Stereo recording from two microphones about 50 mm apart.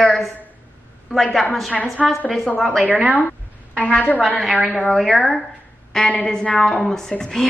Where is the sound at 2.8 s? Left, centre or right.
Right.